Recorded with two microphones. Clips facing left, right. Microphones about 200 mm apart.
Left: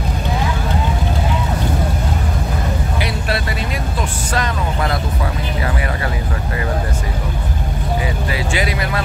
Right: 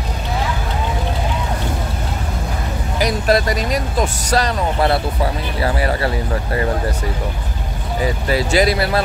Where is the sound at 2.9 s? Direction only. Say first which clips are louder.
Right 11 dB; 40° right (ahead or behind).